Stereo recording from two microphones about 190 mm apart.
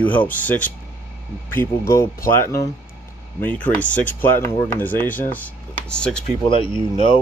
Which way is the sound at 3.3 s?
10° left (ahead or behind).